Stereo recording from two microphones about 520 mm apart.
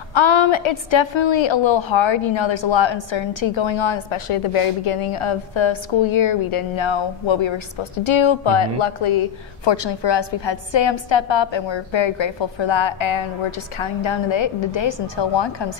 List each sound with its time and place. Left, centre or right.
0.1 s a woman's voice: left